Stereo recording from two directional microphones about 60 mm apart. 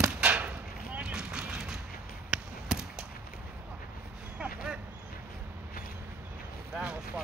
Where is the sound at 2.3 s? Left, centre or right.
Centre.